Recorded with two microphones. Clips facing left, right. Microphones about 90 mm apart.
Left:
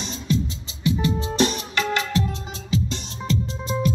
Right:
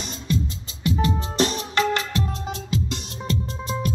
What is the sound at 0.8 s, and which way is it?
Music, 45° right (ahead or behind).